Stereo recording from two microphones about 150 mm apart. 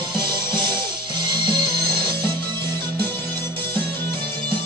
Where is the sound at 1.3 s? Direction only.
30° right (ahead or behind).